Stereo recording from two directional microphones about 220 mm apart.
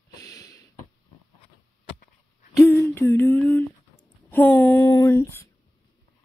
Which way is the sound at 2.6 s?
10° left (ahead or behind).